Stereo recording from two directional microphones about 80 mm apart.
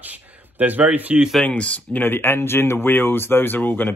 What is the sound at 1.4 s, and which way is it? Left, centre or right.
Speech, centre.